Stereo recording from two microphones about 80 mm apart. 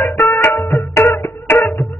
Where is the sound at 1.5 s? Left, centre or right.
Left.